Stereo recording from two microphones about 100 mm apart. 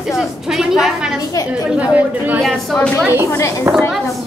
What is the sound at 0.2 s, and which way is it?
A woman's voice, 5° right (ahead or behind).